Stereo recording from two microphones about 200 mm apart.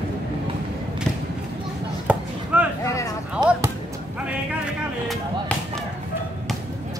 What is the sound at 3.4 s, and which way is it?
Basketball bounce, 20° right (ahead or behind).